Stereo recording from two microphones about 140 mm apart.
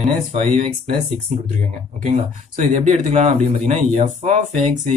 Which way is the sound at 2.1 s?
60° right (ahead or behind).